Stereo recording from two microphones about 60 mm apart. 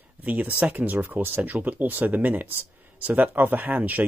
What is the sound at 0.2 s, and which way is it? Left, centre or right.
Speech, right.